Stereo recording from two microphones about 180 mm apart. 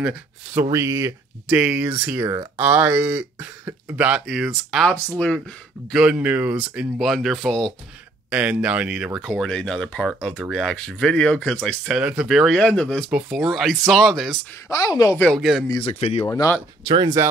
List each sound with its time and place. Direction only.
0.0 s speech: 5° right (ahead or behind)
8.3 s speech: 10° right (ahead or behind)
14.7 s speech: 20° left (ahead or behind)
15.2 s speech: centre (ahead or behind)
15.7 s speech: 35° left (ahead or behind)
16.3 s speech: 15° left (ahead or behind)
16.8 s speech: 25° right (ahead or behind)